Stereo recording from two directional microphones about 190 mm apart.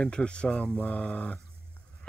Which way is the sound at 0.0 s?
5° left (ahead or behind).